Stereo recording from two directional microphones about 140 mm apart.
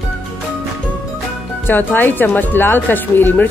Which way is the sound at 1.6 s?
15° left (ahead or behind).